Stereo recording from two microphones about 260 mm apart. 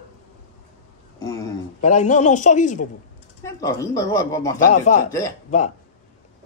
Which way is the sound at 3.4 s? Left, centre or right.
Centre.